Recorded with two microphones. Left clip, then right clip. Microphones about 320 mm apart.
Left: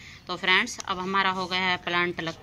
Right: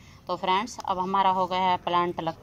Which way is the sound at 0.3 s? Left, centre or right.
Centre.